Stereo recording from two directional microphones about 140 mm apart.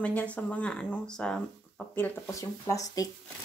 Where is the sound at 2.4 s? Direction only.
25° left (ahead or behind).